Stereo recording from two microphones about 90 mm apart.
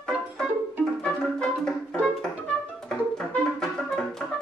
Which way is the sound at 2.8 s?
5° left (ahead or behind).